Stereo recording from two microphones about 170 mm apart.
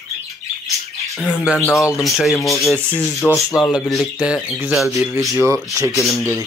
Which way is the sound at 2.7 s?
10° right (ahead or behind).